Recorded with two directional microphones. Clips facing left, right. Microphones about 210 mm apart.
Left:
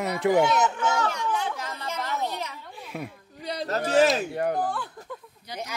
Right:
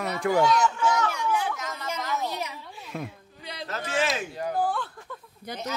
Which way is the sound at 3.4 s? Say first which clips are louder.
Left 7 dB; 40° left (ahead or behind).